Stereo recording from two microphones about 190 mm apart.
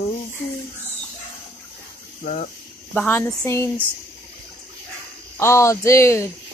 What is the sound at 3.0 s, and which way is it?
Speech, 10° left (ahead or behind).